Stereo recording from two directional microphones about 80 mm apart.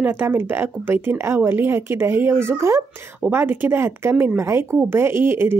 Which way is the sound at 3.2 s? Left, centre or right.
Right.